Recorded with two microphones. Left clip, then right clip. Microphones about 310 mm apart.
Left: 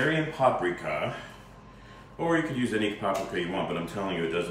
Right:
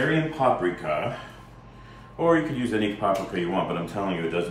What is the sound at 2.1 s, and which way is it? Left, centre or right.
Speech, centre.